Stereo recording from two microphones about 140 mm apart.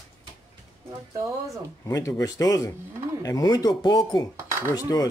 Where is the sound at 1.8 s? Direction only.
25° left (ahead or behind).